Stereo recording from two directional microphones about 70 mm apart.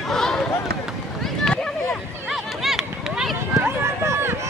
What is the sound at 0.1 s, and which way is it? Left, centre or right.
Run, centre.